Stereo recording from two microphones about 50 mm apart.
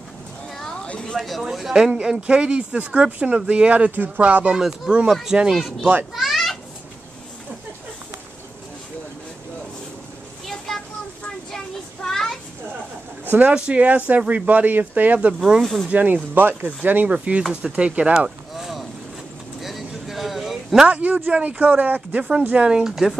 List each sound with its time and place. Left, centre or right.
0.8 s a sound: centre
1.1 s speech: centre; by 4.5 s right
4.5 s speech: centre
6.1 s a sound: centre
10.4 s a sound: centre
13.4 s speech: right
15.1 s speech: right
17.4 s speech: centre
17.7 s speech: right
18.6 s boat: centre
19.6 s vehicle: centre
20.8 s speech: right
22.7 s speech: centre